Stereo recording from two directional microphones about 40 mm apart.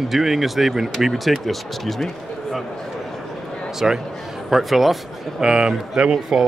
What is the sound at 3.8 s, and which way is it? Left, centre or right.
Speech, centre.